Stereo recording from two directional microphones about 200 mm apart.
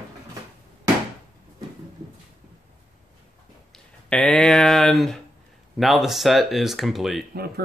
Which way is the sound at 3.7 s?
5° left (ahead or behind).